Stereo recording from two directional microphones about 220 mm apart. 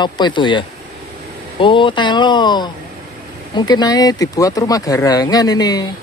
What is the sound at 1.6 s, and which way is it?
Speech, 20° left (ahead or behind).